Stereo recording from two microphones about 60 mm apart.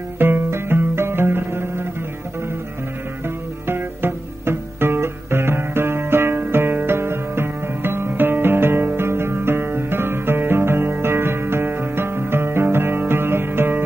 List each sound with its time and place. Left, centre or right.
0.2 s music: right
3.6 s music: right